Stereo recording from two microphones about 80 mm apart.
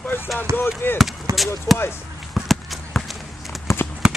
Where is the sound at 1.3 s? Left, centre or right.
Right.